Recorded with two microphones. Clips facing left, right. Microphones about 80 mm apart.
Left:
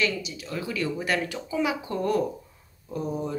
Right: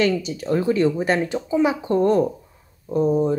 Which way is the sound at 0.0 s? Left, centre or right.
Right.